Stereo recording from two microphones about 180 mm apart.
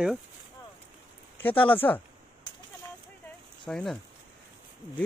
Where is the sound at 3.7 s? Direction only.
5° left (ahead or behind).